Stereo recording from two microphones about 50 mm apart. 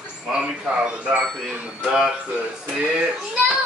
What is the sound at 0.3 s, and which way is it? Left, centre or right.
Speech, centre.